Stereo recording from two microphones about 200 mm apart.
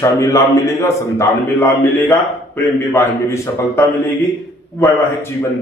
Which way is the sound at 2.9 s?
15° left (ahead or behind).